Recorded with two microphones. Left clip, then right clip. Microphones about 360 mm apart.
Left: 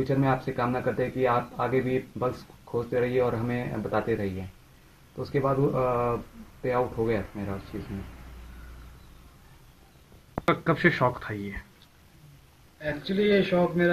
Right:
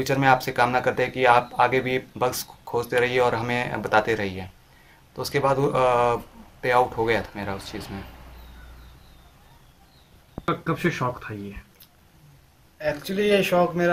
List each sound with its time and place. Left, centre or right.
0.0 s speech: right
10.4 s speech: centre
13.0 s speech: centre